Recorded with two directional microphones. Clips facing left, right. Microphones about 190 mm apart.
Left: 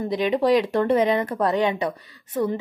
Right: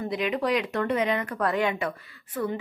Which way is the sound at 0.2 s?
25° left (ahead or behind).